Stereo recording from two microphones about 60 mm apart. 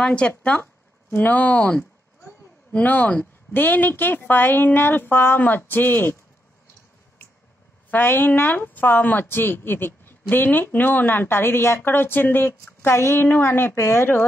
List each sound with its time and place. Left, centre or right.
0.0 s speech: centre
1.1 s speech: left
7.9 s speech: left